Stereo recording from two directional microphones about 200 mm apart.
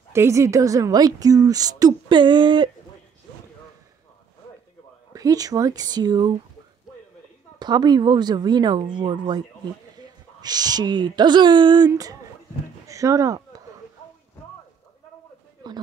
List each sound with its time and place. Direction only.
0.1 s a woman's voice: 15° right (ahead or behind)
5.1 s speech: 20° right (ahead or behind)
7.5 s speech: 20° right (ahead or behind)